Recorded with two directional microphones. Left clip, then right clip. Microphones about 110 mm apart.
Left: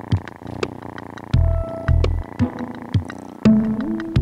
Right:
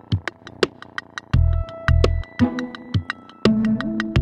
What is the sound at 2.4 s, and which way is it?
Music, centre (ahead or behind).